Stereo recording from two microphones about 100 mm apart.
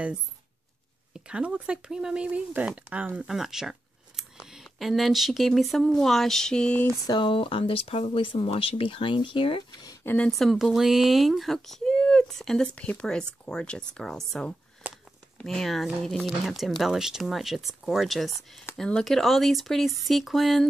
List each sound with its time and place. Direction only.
1.1 s speech: 10° right (ahead or behind); by 6.8 s 10° left (ahead or behind)
7.1 s speech: 55° left (ahead or behind)
10.0 s speech: 15° left (ahead or behind)
10.3 s speech: centre (ahead or behind)
14.8 s a sound: 15° right (ahead or behind)
15.3 s speech: 5° left (ahead or behind)